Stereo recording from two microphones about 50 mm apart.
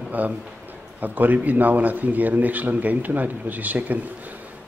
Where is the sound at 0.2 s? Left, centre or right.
Right.